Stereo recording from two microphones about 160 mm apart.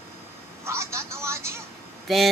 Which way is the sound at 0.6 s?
15° right (ahead or behind).